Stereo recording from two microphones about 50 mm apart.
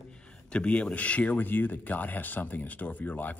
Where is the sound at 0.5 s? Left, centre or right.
Left.